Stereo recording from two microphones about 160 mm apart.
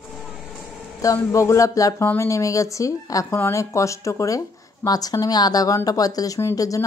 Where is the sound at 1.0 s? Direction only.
20° left (ahead or behind).